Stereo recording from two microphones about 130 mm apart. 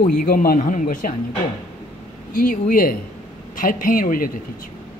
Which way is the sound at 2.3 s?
90° left.